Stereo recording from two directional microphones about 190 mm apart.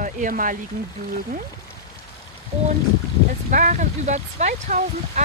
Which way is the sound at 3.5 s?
40° right (ahead or behind).